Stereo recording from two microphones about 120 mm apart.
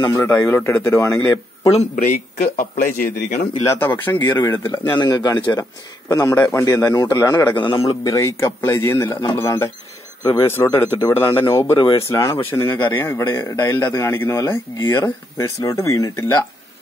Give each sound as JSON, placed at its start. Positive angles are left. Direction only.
{"t": 0.0, "sound": "a man's voice", "side_deg": 30}
{"t": 0.3, "sound": "a man's voice", "side_deg": 15}
{"t": 1.7, "sound": "a man's voice", "side_deg": 65}
{"t": 3.6, "sound": "speech", "side_deg": 15}
{"t": 4.9, "sound": "a man's voice", "side_deg": 35}
{"t": 6.3, "sound": "speech", "side_deg": 15}
{"t": 6.6, "sound": "a man's voice", "side_deg": 30}
{"t": 7.5, "sound": "a man's voice", "side_deg": 50}
{"t": 8.0, "sound": "a man's voice", "side_deg": 25}